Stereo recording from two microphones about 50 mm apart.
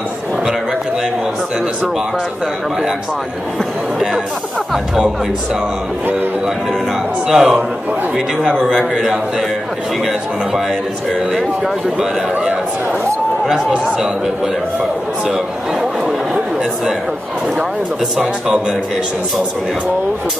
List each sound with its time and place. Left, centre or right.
7.2 s speech: centre
8.7 s speech: centre
11.3 s speech: centre
13.5 s speech: centre
18.1 s speech: right